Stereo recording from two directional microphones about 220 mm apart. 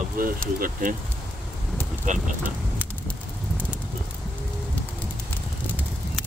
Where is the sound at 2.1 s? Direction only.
35° right (ahead or behind).